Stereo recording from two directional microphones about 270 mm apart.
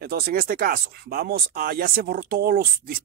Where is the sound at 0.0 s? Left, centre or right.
Right.